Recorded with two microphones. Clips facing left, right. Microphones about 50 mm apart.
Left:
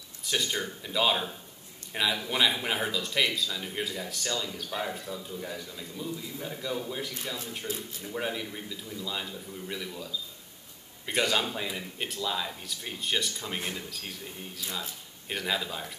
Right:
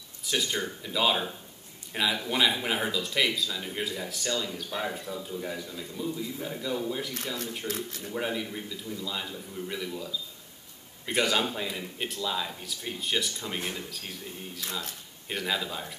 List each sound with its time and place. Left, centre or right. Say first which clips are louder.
0.2 s speech: right 1 dB; centre
11.1 s speech: right 1 dB; centre